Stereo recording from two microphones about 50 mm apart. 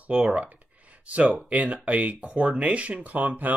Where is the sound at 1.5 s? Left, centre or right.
Right.